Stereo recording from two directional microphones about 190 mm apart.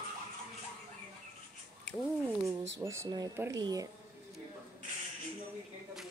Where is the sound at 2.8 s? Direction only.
15° right (ahead or behind).